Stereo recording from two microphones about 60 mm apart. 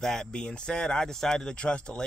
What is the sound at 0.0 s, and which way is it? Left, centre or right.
Speech, centre.